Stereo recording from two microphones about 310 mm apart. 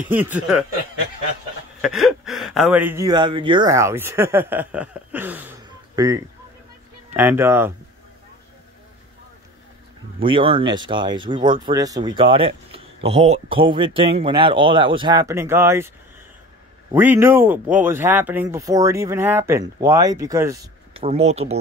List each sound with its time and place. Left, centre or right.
0.0 s speech: centre
1.8 s speech: centre
10.2 s speech: centre
16.9 s speech: centre